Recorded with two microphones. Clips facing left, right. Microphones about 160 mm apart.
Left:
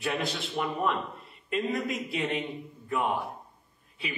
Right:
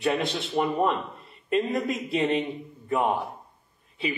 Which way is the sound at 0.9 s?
Centre (ahead or behind).